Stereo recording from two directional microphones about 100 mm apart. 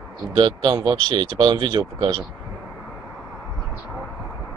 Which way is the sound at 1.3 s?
50° right (ahead or behind).